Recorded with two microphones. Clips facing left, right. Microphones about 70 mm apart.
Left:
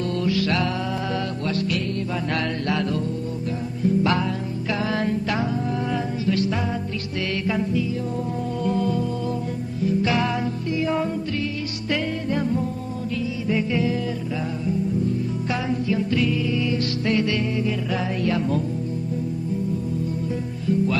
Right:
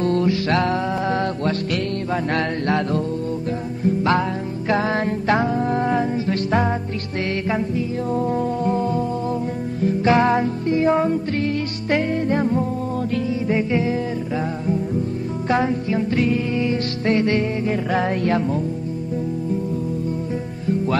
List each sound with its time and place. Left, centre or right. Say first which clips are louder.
0.0 s music: right 4 dB; right
9.8 s music: right 6 dB; right
13.5 s music: right 1 dB; right
15.5 s music: right 5 dB; right
20.6 s music: right 1 dB; right